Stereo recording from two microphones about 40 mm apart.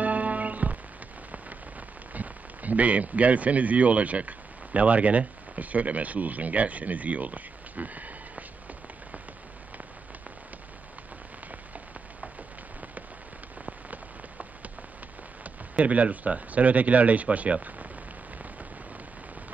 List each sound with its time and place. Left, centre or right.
0.0 s music: right
2.1 s speech: right
15.4 s speech: right